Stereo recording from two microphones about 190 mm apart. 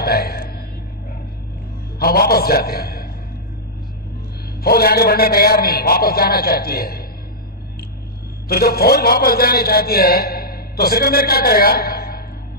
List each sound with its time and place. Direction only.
0.0 s speech: 55° left (ahead or behind)
2.0 s a man's voice: 55° left (ahead or behind)
4.6 s a man's voice: 55° left (ahead or behind)
8.5 s a man's voice: 55° left (ahead or behind)